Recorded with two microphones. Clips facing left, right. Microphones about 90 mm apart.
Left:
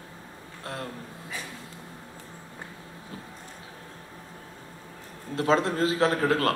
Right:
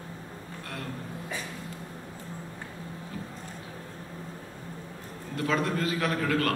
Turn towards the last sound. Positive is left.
turn(degrees=25)  # may be behind; listen again after turning